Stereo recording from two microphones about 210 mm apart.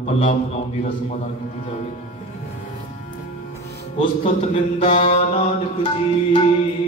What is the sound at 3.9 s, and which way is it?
Music, 30° left (ahead or behind).